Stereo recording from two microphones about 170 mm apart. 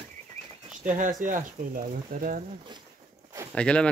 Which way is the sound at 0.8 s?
50° right (ahead or behind).